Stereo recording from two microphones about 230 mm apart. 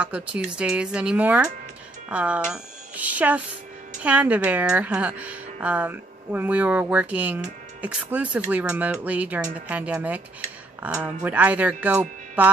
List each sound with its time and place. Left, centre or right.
0.0 s a woman's voice: centre